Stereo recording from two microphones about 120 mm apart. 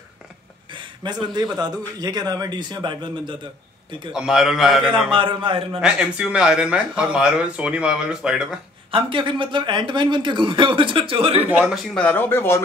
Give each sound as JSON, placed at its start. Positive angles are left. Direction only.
{"t": 0.7, "sound": "a sound", "side_deg": -40}
{"t": 1.3, "sound": "a man's voice", "side_deg": -35}
{"t": 4.1, "sound": "a man's voice", "side_deg": -5}
{"t": 5.1, "sound": "speech", "side_deg": -45}
{"t": 5.8, "sound": "speech", "side_deg": -5}
{"t": 8.9, "sound": "speech", "side_deg": -45}
{"t": 11.4, "sound": "speech", "side_deg": -10}
{"t": 11.9, "sound": "speech", "side_deg": 10}